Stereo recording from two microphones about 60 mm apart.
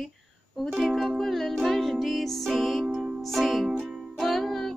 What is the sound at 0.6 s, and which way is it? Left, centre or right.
Music, centre.